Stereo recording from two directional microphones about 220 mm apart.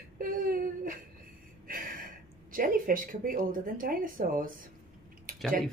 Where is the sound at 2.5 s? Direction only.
40° right (ahead or behind).